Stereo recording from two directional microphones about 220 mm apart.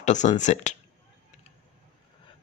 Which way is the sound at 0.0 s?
35° left (ahead or behind).